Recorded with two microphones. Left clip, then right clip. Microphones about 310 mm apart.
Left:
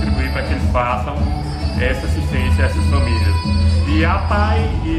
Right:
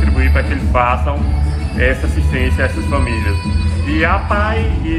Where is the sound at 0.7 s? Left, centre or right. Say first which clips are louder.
Right 4 dB; centre.